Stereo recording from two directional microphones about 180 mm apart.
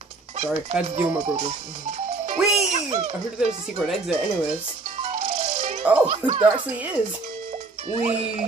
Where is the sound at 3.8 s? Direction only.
Centre (ahead or behind).